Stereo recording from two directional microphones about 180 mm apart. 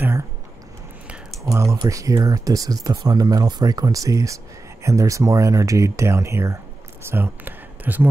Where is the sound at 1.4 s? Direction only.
15° right (ahead or behind).